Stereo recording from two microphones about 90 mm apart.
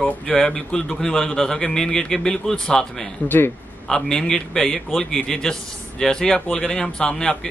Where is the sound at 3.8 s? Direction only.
5° left (ahead or behind).